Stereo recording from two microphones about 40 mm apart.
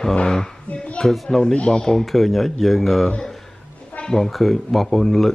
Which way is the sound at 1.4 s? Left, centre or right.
Left.